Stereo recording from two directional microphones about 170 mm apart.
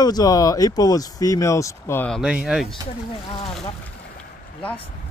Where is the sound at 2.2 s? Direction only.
5° right (ahead or behind).